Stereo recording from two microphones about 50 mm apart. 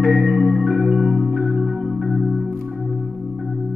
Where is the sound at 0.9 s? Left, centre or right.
Right.